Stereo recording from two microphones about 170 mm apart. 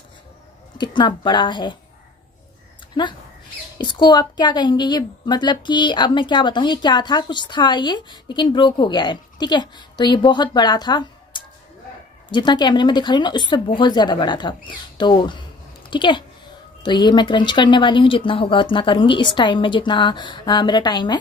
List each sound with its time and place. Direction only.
0.7 s a woman's voice: 25° left (ahead or behind)
3.7 s a woman's voice: 25° left (ahead or behind)